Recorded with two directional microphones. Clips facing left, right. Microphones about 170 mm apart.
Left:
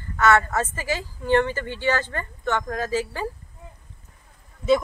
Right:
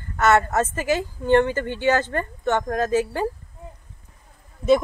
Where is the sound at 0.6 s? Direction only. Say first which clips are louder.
Right 5 dB; 20° right (ahead or behind).